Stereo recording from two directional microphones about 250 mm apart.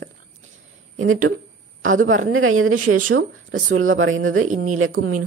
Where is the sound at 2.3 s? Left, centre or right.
Right.